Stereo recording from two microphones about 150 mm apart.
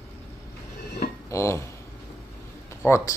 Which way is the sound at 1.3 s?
20° left (ahead or behind).